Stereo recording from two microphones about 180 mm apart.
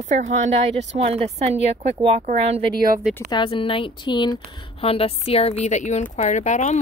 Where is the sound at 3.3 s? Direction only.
25° left (ahead or behind).